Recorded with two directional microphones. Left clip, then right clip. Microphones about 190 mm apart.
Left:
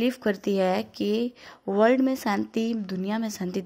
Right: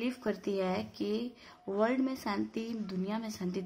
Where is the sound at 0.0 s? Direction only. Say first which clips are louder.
Left 9 dB; 35° left (ahead or behind).